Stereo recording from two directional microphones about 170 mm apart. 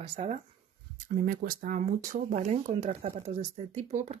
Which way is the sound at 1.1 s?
55° right (ahead or behind).